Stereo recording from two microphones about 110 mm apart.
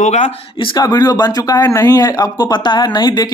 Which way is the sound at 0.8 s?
35° left (ahead or behind).